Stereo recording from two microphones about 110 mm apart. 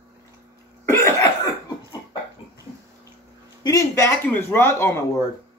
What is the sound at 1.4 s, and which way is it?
Cough, 45° left (ahead or behind).